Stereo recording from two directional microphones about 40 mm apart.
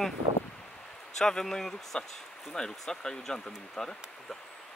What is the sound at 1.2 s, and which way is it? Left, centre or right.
Speech, centre.